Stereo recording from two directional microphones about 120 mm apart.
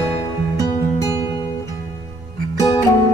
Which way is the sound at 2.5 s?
30° left (ahead or behind).